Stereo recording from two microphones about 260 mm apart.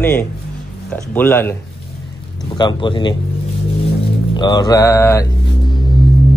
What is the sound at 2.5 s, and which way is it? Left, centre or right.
Speech, centre.